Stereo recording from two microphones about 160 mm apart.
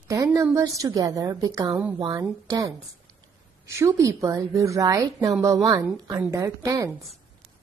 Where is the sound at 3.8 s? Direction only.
20° right (ahead or behind).